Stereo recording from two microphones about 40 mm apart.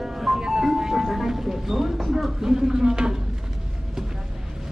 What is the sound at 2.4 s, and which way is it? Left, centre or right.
Speech, centre.